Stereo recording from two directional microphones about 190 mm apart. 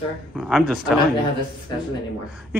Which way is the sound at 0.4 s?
Centre (ahead or behind).